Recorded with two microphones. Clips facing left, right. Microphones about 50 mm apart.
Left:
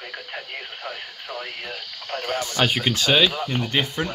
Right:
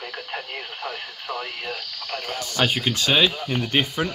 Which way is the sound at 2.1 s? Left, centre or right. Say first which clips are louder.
Left 4 dB; left.